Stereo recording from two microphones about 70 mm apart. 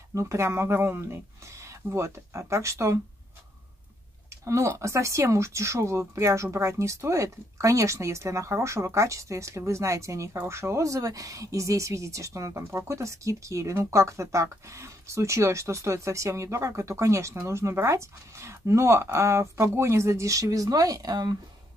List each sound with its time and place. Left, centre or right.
0.1 s speech: right
4.5 s speech: right